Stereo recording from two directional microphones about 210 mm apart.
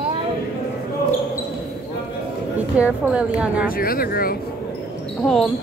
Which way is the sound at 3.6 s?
45° left (ahead or behind).